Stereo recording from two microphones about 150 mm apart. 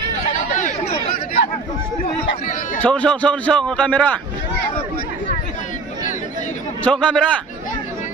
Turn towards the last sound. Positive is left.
turn(degrees=5)  # may be behind; listen again after turning